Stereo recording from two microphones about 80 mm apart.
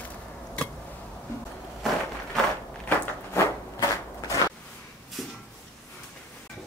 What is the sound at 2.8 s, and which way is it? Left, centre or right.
Walk, left.